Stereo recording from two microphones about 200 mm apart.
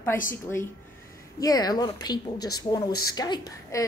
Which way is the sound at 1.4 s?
20° left (ahead or behind).